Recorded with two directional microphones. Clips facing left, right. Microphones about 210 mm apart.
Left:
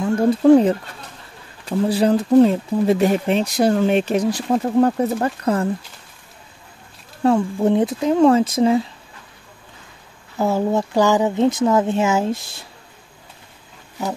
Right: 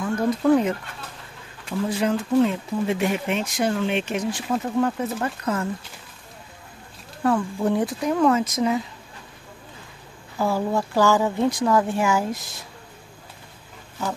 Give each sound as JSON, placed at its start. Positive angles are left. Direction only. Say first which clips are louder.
{"t": 0.0, "sound": "speech", "louder": "left 6 dB", "side_deg": 30}
{"t": 7.2, "sound": "speech", "louder": "left 5 dB", "side_deg": 25}
{"t": 10.3, "sound": "speech", "louder": "left 4 dB", "side_deg": 25}